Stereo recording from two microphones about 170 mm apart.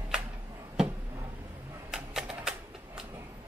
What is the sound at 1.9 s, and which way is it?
Typewriter, 5° right (ahead or behind).